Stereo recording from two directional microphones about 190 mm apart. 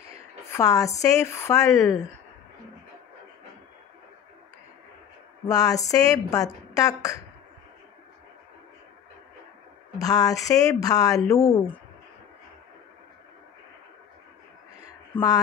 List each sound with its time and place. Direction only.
0.5 s speech: 15° left (ahead or behind)
5.5 s speech: 20° left (ahead or behind)
9.9 s speech: 20° left (ahead or behind)
15.1 s speech: 10° left (ahead or behind)